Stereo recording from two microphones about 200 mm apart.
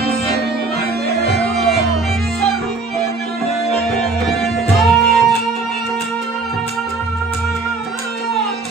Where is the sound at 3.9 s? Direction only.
Centre (ahead or behind).